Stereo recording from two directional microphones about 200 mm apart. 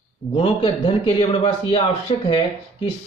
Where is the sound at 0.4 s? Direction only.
25° left (ahead or behind).